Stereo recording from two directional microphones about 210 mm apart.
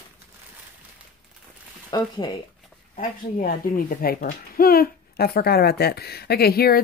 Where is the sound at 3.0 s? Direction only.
40° left (ahead or behind).